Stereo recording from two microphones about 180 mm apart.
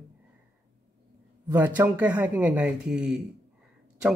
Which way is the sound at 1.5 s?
10° right (ahead or behind).